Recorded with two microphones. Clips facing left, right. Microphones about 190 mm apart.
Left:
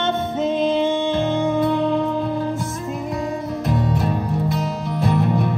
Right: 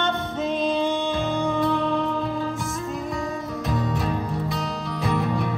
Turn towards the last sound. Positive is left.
turn(degrees=0)  # may be behind; listen again after turning